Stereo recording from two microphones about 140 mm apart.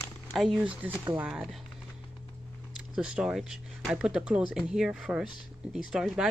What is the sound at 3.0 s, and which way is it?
Speech, 5° right (ahead or behind).